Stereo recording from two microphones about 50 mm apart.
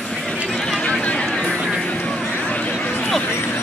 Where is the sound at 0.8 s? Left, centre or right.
Left.